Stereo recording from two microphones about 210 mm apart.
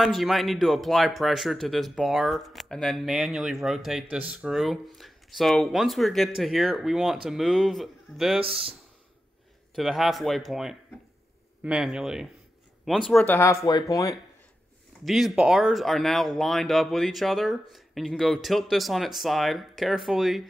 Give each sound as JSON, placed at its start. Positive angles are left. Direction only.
{"t": 0.0, "sound": "speech", "side_deg": 0}
{"t": 8.4, "sound": "speech", "side_deg": -25}
{"t": 9.8, "sound": "speech", "side_deg": 0}
{"t": 15.0, "sound": "speech", "side_deg": 0}